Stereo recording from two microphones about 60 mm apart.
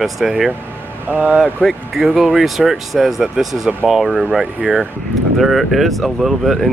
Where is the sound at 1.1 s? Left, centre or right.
Right.